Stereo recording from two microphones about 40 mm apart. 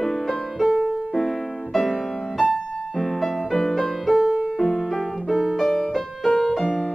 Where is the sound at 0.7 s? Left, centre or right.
Centre.